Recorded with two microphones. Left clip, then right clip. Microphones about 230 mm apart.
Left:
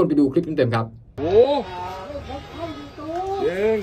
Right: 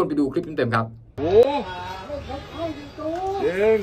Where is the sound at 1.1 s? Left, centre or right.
Centre.